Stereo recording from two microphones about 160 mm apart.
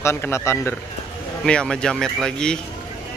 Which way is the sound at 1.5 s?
5° left (ahead or behind).